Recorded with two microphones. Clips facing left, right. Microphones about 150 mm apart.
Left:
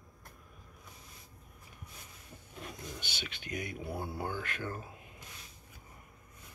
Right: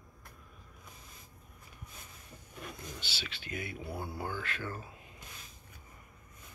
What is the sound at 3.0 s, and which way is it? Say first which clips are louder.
Speech: left 1 dB; 15° left (ahead or behind).